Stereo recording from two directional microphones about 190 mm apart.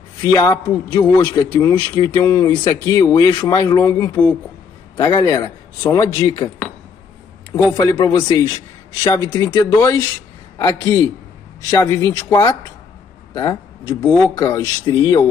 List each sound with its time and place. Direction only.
0.2 s a man's voice: 20° left (ahead or behind)
7.7 s a man's voice: 20° left (ahead or behind)